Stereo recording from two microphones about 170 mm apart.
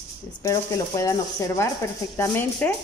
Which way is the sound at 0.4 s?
20° left (ahead or behind).